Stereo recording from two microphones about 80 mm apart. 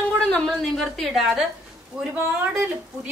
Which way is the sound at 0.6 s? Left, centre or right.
Centre.